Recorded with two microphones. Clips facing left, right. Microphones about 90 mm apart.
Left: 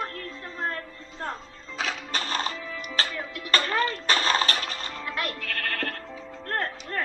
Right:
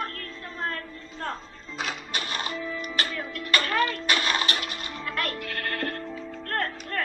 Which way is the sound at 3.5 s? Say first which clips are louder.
Even; 30° left (ahead or behind).